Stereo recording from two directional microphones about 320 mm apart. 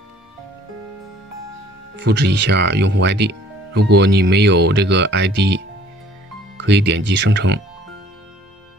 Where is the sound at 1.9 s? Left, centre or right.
Right.